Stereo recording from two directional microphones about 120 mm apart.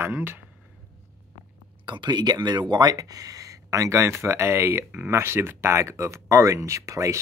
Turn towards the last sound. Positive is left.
turn(degrees=-25)  # may be behind; listen again after turning